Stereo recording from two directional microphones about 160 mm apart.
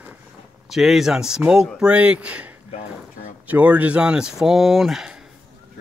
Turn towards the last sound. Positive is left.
turn(degrees=0)  # may be behind; listen again after turning